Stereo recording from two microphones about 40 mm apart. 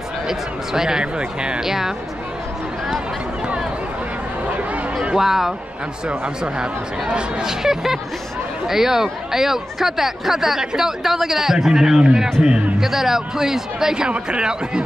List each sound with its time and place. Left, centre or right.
0.3 s speech: centre
1.6 s speech: centre
5.1 s speech: centre
6.0 s speech: right
7.4 s speech: centre